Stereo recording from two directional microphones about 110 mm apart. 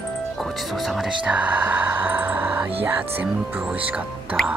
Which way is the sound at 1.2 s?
15° right (ahead or behind).